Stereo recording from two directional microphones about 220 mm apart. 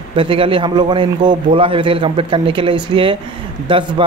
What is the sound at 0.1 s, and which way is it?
A man's voice, 25° right (ahead or behind).